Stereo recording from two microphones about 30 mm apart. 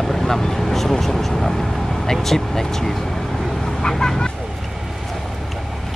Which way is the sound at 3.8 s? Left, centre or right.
Left.